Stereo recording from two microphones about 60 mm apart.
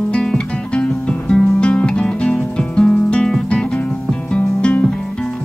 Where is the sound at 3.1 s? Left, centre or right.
Centre.